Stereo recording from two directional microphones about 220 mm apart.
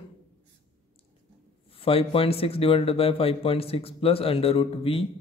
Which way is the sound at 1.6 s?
25° left (ahead or behind).